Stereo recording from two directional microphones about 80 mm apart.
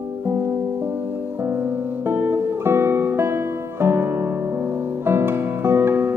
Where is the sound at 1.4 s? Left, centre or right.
Right.